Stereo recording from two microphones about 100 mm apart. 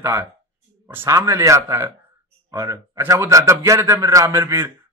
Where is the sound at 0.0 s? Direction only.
25° right (ahead or behind).